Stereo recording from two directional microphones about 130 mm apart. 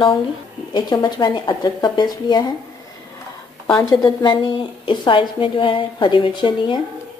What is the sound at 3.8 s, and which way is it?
A woman's voice, 35° left (ahead or behind).